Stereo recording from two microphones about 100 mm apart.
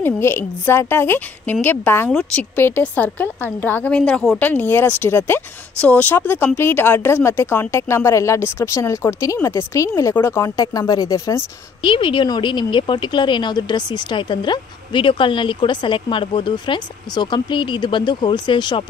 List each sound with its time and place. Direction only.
0.0 s a woman's voice: 25° left (ahead or behind); by 4.4 s 5° left (ahead or behind)
4.4 s speech: 20° left (ahead or behind); by 11.4 s 35° left (ahead or behind)
11.8 s a woman's voice: 60° left (ahead or behind)